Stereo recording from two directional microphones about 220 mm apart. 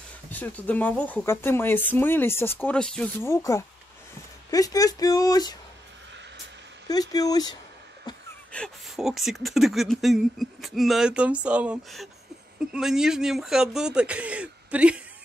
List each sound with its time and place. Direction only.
0.3 s speech: 10° left (ahead or behind)
6.9 s speech: 15° left (ahead or behind)
8.5 s speech: 5° left (ahead or behind)